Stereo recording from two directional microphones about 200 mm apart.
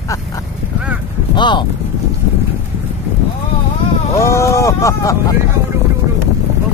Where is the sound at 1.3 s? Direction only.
25° left (ahead or behind).